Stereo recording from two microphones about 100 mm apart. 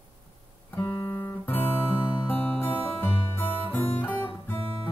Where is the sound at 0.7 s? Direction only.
30° left (ahead or behind).